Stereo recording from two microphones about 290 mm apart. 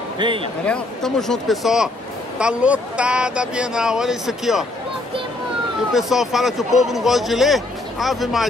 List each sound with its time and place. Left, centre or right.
0.2 s a man's voice: centre
0.7 s speech: centre
5.9 s speech: centre